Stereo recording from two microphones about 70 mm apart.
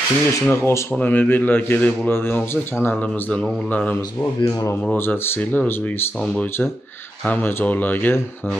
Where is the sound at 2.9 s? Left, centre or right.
Centre.